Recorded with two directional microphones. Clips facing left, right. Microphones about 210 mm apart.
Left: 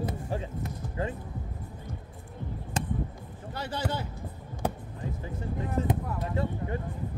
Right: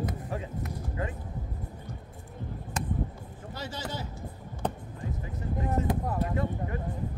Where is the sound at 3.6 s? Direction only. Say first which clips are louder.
Left 4 dB; 60° left (ahead or behind).